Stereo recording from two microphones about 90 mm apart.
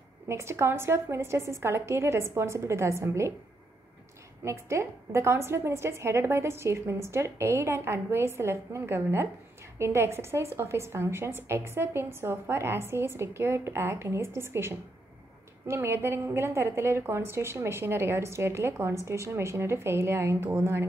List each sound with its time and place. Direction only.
0.3 s a woman's voice: 30° right (ahead or behind)
4.5 s a woman's voice: 30° right (ahead or behind)